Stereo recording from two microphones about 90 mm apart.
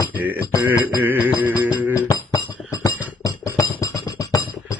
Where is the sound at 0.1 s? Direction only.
20° right (ahead or behind).